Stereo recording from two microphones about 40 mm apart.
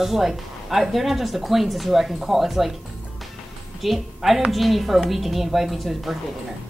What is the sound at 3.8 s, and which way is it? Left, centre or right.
Speech, centre.